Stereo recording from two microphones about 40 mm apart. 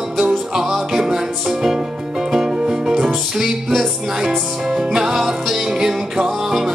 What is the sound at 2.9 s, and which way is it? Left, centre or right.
Music, centre.